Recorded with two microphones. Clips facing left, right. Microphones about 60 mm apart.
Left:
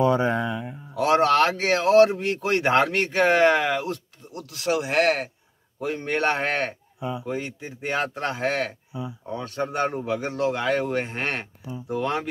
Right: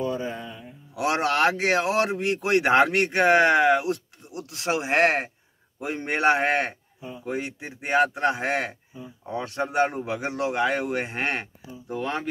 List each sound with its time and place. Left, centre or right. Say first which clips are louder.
0.0 s a sound: left 8 dB; left
0.9 s a man's voice: left 5 dB; centre
7.0 s speech: left 11 dB; left
7.2 s a man's voice: even; centre
11.9 s speech: left 3 dB; centre